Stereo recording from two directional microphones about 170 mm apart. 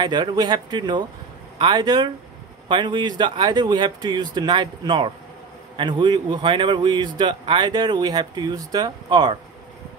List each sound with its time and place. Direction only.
0.0 s speech: 25° right (ahead or behind)